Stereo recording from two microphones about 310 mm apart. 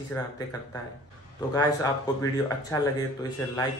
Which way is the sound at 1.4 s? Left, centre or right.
Centre.